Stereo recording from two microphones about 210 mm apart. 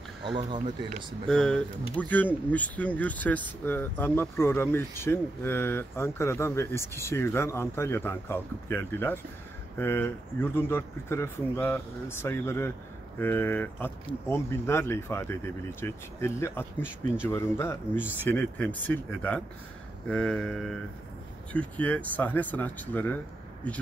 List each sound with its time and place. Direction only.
0.2 s speech: 20° right (ahead or behind)
1.2 s speech: 5° left (ahead or behind)